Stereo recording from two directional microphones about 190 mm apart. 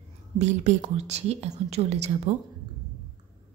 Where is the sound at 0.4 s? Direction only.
35° right (ahead or behind).